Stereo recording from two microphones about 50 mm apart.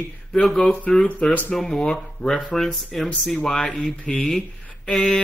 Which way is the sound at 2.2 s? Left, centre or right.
Left.